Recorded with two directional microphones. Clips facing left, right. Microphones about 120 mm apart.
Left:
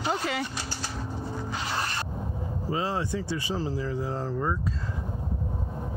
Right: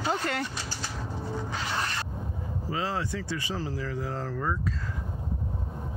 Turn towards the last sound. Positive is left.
turn(degrees=15)  # may be behind; listen again after turning